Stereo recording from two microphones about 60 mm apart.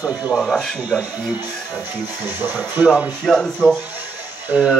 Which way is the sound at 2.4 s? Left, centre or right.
Right.